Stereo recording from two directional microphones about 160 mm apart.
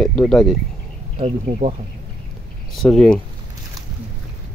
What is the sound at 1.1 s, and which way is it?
Speech, 40° right (ahead or behind).